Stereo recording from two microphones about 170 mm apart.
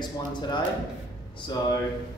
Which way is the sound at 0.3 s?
25° left (ahead or behind).